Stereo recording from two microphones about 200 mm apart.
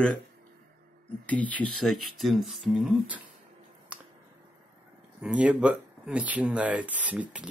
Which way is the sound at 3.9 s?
5° right (ahead or behind).